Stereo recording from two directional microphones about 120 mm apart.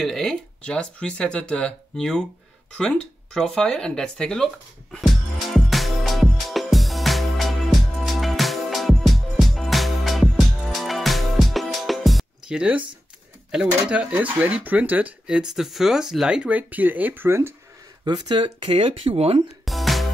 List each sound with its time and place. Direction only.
0.0 s speech: centre (ahead or behind)
4.9 s music: centre (ahead or behind)
13.8 s speech: 10° right (ahead or behind)
18.0 s speech: 40° right (ahead or behind); by 19.4 s 55° right (ahead or behind)
19.6 s music: centre (ahead or behind)